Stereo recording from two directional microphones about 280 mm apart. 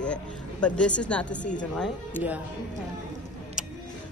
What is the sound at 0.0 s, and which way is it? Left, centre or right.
A woman's voice, centre.